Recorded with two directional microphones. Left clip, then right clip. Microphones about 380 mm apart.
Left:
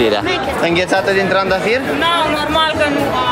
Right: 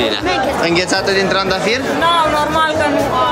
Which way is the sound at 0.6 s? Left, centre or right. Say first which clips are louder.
Left 1 dB; centre.